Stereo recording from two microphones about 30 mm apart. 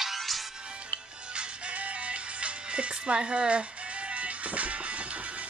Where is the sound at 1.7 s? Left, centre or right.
Right.